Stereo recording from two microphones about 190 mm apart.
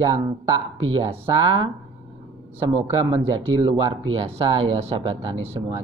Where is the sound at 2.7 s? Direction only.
25° right (ahead or behind).